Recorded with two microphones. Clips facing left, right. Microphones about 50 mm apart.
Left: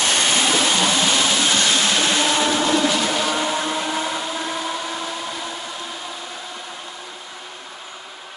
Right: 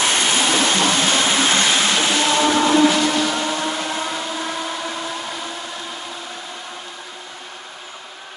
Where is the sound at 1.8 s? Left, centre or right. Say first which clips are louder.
Right 1 dB; centre.